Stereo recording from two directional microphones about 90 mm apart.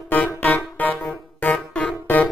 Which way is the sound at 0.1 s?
20° left (ahead or behind).